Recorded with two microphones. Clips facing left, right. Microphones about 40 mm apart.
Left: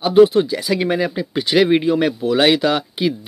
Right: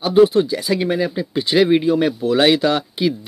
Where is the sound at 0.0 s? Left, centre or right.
Left.